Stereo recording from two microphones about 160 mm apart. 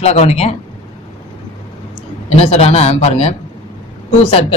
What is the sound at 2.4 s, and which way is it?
A woman's voice, 40° left (ahead or behind).